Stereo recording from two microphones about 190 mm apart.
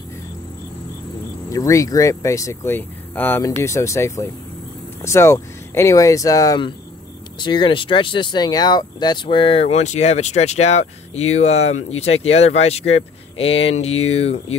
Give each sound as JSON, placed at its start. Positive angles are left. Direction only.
{"t": 1.5, "sound": "speech", "side_deg": 15}